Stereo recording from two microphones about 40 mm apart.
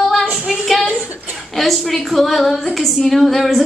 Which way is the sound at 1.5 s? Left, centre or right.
Centre.